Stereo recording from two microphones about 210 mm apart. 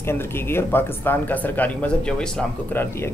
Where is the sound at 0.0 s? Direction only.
10° left (ahead or behind).